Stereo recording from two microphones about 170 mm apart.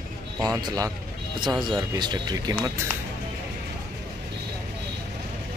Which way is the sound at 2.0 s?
25° right (ahead or behind).